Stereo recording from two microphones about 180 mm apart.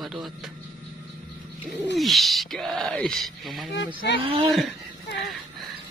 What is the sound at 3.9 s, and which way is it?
Speech, 30° right (ahead or behind).